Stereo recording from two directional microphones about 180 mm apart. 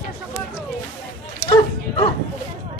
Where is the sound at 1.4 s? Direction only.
25° left (ahead or behind).